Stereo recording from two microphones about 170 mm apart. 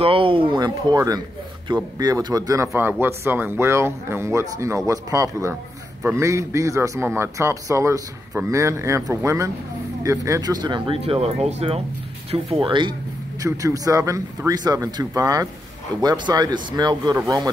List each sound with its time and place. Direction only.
0.0 s speech: 30° right (ahead or behind)
13.4 s speech: 20° right (ahead or behind)